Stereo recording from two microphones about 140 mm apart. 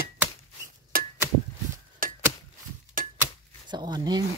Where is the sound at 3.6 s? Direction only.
30° right (ahead or behind).